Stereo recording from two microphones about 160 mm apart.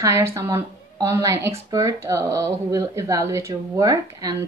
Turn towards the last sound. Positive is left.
turn(degrees=-20)  # may be behind; listen again after turning